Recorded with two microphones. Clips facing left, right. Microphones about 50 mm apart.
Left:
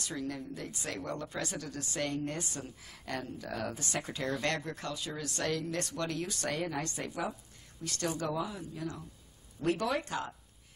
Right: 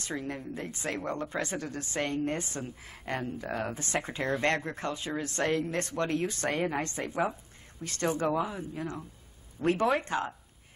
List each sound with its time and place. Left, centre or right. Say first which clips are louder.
0.0 s speech: right 2 dB; right